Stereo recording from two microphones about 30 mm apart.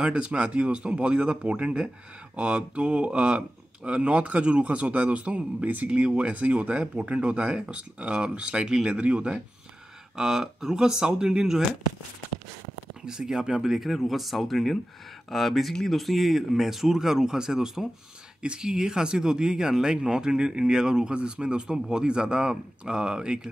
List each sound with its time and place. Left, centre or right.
0.0 s speech: right
10.1 s speech: centre
13.0 s speech: right
13.7 s speech: centre
18.4 s speech: right
21.1 s speech: right